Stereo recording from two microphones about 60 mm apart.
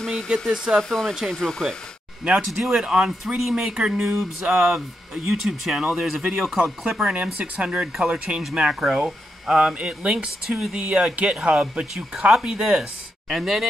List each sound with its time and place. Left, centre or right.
0.0 s a sound: centre
0.7 s speech: centre
2.3 s speech: centre
6.8 s speech: centre